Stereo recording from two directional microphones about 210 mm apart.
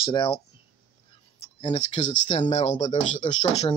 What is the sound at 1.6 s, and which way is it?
Speech, 30° left (ahead or behind).